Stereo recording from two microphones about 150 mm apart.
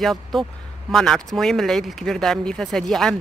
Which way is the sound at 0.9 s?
Centre (ahead or behind).